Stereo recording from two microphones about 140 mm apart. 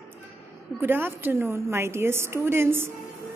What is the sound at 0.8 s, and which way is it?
A woman's voice, 15° right (ahead or behind).